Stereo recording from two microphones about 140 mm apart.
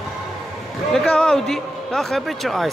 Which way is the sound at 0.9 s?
5° left (ahead or behind).